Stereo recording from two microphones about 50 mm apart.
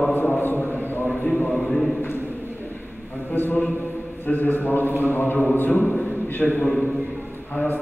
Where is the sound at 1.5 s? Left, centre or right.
Centre.